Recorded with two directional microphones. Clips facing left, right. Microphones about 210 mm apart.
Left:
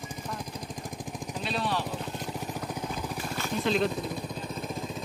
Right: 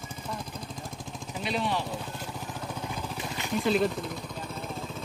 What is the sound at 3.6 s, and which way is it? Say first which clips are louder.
Speech: right 2 dB; 5° right (ahead or behind).